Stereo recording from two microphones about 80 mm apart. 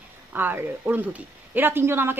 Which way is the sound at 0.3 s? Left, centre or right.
Right.